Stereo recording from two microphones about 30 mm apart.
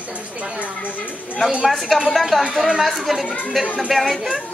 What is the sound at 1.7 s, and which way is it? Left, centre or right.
Speech, centre.